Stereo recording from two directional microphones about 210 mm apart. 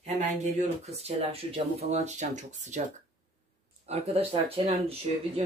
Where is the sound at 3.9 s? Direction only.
30° right (ahead or behind).